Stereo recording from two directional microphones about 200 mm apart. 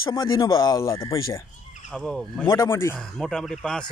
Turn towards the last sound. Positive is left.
turn(degrees=5)  # may be behind; listen again after turning